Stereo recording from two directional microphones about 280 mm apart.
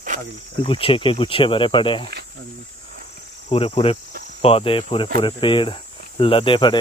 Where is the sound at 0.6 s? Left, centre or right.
Centre.